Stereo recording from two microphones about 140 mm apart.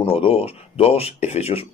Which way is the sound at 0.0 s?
45° left (ahead or behind).